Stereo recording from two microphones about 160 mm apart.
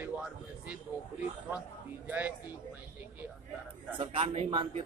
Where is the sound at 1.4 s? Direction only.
10° right (ahead or behind).